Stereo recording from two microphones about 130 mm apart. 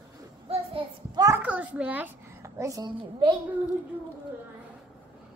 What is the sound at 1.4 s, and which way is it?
A child's voice, 10° right (ahead or behind).